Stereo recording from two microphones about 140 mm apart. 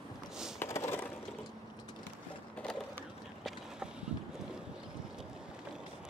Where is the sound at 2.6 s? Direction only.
5° left (ahead or behind).